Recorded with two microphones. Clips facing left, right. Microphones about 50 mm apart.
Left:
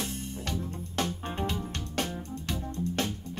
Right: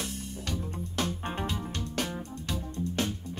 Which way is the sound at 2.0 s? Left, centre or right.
Right.